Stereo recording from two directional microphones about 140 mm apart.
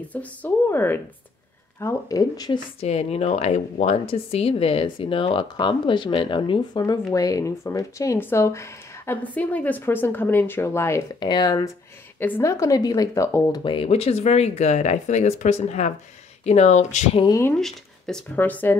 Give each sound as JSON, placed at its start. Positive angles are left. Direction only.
{"t": 0.1, "sound": "speech", "side_deg": 10}
{"t": 2.8, "sound": "speech", "side_deg": 45}
{"t": 6.8, "sound": "speech", "side_deg": 25}
{"t": 11.1, "sound": "speech", "side_deg": 30}
{"t": 12.2, "sound": "speech", "side_deg": 15}
{"t": 13.7, "sound": "speech", "side_deg": 45}
{"t": 17.6, "sound": "speech", "side_deg": 5}